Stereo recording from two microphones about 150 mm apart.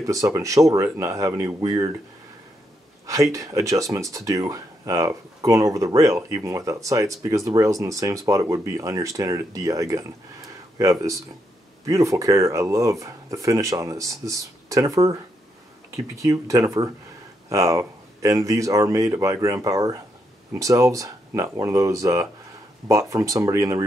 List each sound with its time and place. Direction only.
0.0 s speech: 25° right (ahead or behind)
3.1 s speech: 20° right (ahead or behind)
16.2 s speech: 20° right (ahead or behind)